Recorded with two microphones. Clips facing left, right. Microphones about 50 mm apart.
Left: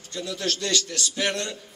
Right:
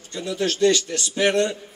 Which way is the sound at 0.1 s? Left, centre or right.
Right.